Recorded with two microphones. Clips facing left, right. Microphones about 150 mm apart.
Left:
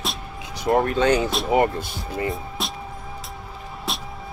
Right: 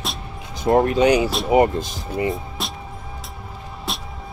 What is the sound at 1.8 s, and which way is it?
Speech, 90° right.